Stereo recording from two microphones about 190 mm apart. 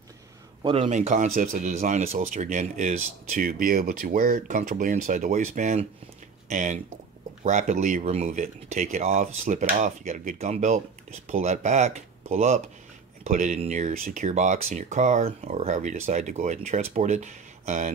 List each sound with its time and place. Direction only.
0.6 s a man's voice: 25° right (ahead or behind)
0.8 s speech: 40° right (ahead or behind)